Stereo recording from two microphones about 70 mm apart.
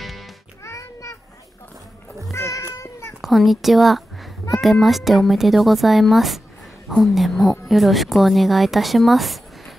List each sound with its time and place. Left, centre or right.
0.7 s a sound: left
2.3 s cat: left
3.2 s a woman's voice: centre